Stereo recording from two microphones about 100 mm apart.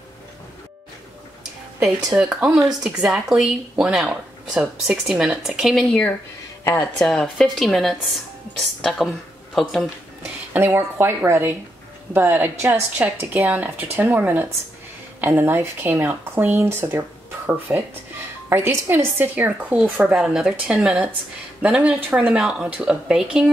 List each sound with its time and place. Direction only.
2.1 s speech: 10° right (ahead or behind)
6.6 s a woman's voice: 25° left (ahead or behind)
7.0 s speech: 5° left (ahead or behind)
10.5 s a woman's voice: 20° right (ahead or behind); by 23.5 s 5° right (ahead or behind)